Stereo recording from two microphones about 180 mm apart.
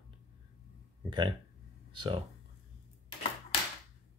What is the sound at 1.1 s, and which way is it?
Speech, 25° right (ahead or behind).